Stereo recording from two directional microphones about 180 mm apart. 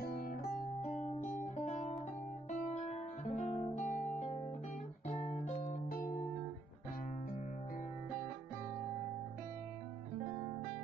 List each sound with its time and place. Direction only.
0.0 s music: 55° left (ahead or behind)
1.0 s guitar: 35° left (ahead or behind)
5.2 s music: 45° left (ahead or behind)